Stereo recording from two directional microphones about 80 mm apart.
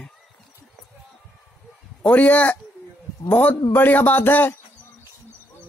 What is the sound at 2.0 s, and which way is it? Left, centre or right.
Speech, centre.